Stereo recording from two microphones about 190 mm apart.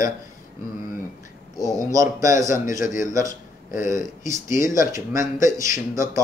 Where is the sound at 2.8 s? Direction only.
45° left (ahead or behind).